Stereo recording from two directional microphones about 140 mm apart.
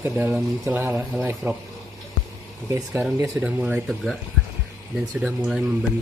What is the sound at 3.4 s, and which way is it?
Speech, 10° right (ahead or behind).